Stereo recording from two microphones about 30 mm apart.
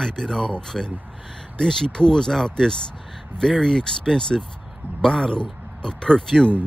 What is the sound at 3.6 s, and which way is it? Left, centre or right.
Speech, centre.